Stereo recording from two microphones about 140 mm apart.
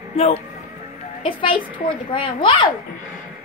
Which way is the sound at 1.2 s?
40° left (ahead or behind).